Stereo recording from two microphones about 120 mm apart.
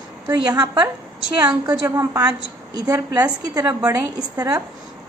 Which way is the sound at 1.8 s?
25° right (ahead or behind).